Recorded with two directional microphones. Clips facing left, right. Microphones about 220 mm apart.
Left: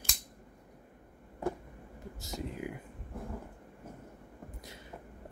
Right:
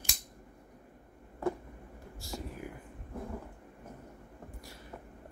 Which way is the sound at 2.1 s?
20° left (ahead or behind).